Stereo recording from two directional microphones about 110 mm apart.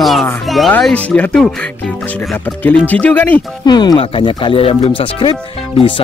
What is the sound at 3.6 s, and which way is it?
Speech, 40° left (ahead or behind).